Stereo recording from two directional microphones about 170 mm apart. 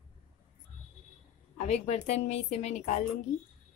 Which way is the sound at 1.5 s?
40° left (ahead or behind).